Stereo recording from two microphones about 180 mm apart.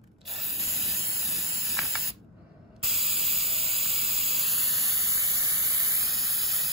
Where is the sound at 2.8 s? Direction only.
35° right (ahead or behind).